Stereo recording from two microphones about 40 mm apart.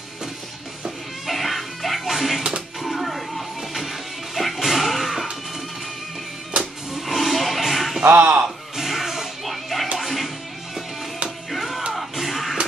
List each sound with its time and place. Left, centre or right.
1.2 s music: centre
7.1 s music: centre
8.2 s a sound: right
8.7 s music: centre